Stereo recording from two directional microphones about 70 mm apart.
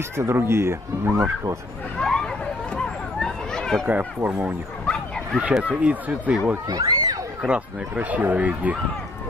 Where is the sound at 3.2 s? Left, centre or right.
Centre.